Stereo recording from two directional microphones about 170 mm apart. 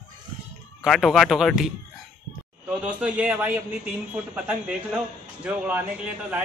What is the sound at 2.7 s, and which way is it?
A man's voice, 10° right (ahead or behind).